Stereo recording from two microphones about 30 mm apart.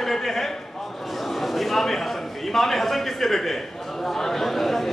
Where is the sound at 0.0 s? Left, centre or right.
Centre.